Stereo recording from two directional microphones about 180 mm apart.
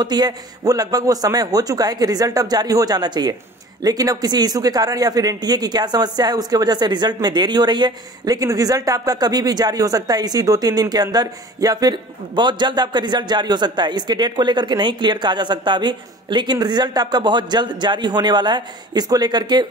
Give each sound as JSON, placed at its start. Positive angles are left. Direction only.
{"t": 0.0, "sound": "speech", "side_deg": -25}